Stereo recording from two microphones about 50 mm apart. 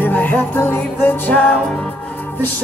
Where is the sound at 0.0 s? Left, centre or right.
Left.